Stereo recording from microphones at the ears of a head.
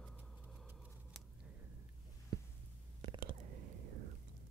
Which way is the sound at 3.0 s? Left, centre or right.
Right.